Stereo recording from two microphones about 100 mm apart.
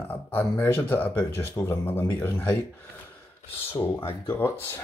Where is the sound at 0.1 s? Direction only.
20° left (ahead or behind).